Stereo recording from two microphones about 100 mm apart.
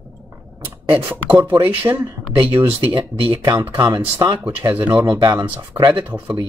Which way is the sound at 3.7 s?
40° right (ahead or behind).